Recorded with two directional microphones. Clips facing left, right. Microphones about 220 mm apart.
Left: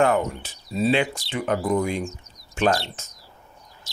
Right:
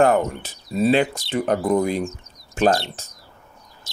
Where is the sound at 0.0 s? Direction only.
40° right (ahead or behind).